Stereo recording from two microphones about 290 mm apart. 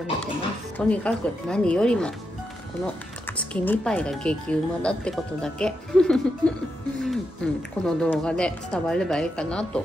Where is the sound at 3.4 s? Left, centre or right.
Centre.